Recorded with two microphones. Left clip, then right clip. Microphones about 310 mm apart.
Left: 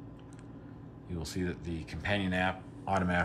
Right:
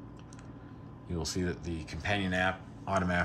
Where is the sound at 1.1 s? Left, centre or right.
Centre.